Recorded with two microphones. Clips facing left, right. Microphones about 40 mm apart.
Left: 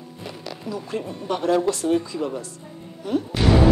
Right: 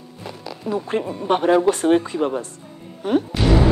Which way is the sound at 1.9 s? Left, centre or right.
Right.